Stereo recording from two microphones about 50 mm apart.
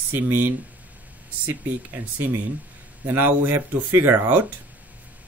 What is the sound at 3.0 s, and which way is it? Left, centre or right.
Speech, right.